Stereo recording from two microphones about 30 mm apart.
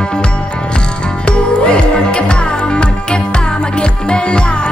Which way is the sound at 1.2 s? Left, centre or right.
Left.